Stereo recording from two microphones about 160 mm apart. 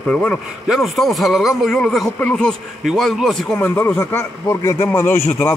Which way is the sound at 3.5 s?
15° left (ahead or behind).